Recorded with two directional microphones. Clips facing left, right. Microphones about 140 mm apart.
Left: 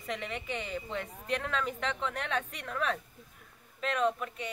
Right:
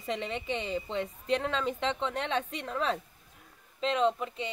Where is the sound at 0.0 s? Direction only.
25° right (ahead or behind).